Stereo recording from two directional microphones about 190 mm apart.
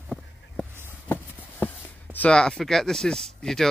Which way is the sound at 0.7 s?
10° right (ahead or behind).